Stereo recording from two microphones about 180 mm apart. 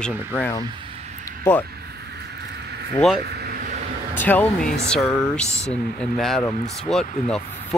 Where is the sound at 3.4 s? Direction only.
55° right (ahead or behind).